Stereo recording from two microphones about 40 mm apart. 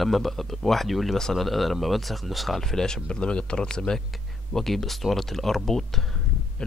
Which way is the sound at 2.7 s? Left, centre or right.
Centre.